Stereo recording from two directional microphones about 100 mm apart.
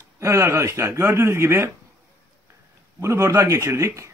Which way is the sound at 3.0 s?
30° right (ahead or behind).